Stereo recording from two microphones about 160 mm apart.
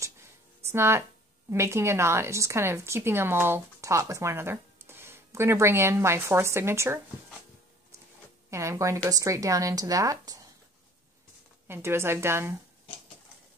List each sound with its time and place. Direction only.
0.7 s speech: 15° right (ahead or behind)
8.5 s a woman's voice: 20° right (ahead or behind)
11.6 s speech: 15° right (ahead or behind)